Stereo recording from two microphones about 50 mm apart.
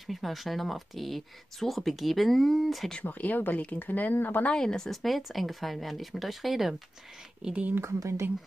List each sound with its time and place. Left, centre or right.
0.0 s speech: centre
3.0 s speech: left
4.6 s speech: centre
7.8 s speech: right